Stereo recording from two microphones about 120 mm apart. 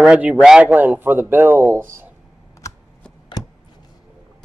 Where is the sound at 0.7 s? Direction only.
15° right (ahead or behind).